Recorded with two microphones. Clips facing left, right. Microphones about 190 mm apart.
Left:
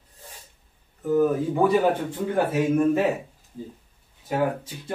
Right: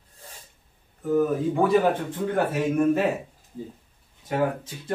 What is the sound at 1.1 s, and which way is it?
Speech, 5° left (ahead or behind).